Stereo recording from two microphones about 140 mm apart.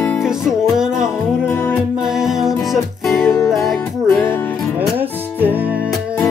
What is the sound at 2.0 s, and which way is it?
Music, 5° right (ahead or behind).